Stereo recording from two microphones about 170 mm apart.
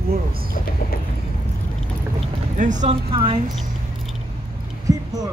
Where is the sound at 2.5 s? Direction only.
50° right (ahead or behind); by 3.3 s 30° right (ahead or behind).